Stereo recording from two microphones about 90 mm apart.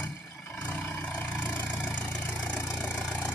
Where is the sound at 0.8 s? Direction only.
20° left (ahead or behind).